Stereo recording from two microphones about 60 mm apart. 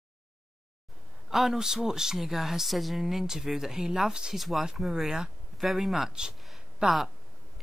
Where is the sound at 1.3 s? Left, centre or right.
Centre.